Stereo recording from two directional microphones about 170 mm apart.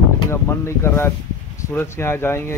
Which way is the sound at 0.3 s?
15° left (ahead or behind).